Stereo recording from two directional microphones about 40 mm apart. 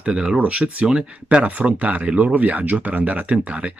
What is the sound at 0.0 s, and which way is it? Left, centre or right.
Speech, centre.